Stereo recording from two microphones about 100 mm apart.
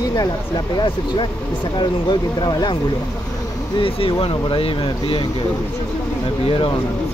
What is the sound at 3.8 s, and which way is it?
Speech, 65° left (ahead or behind).